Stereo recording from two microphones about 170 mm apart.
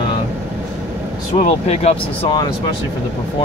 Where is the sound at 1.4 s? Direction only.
40° left (ahead or behind).